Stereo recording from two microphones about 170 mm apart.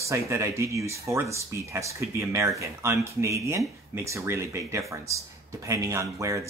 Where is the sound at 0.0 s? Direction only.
15° right (ahead or behind).